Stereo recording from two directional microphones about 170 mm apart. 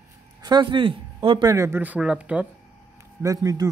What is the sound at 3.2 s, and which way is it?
Speech, 20° right (ahead or behind).